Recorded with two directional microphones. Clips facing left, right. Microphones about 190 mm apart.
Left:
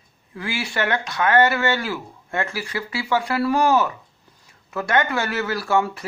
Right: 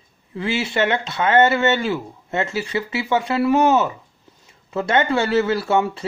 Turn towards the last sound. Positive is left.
turn(degrees=-25)  # may be behind; listen again after turning